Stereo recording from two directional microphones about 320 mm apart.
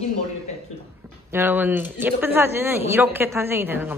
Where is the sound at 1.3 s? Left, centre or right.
Centre.